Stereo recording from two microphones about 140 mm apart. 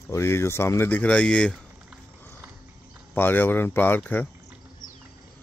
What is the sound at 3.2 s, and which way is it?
Speech, 15° left (ahead or behind).